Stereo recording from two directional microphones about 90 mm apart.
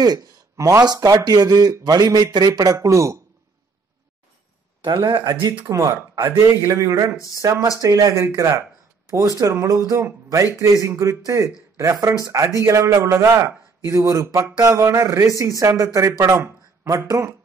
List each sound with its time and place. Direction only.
0.0 s a man's voice: 40° right (ahead or behind)
4.8 s speech: 60° right (ahead or behind)
5.7 s a man's voice: 35° right (ahead or behind)